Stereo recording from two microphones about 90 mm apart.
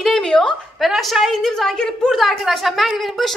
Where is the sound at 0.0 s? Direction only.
5° left (ahead or behind).